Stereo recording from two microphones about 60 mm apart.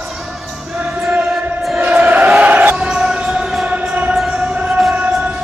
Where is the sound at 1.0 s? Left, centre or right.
Centre.